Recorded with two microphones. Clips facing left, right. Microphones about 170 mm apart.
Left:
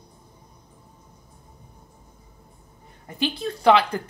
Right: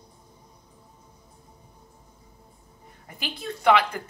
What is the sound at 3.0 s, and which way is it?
Speech, 30° left (ahead or behind).